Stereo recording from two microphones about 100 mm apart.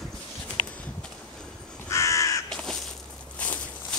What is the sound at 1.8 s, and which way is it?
Crow, 30° left (ahead or behind).